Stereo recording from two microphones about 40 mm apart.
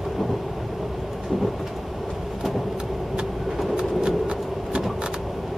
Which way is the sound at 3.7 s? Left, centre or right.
Right.